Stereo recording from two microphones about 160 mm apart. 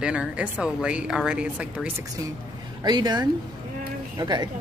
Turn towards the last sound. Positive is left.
turn(degrees=-25)  # may be behind; listen again after turning